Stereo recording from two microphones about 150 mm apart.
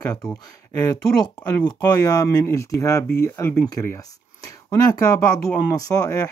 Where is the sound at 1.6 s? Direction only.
25° left (ahead or behind).